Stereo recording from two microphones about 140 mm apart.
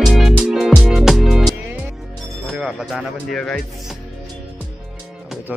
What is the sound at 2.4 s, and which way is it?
Speech, 5° right (ahead or behind).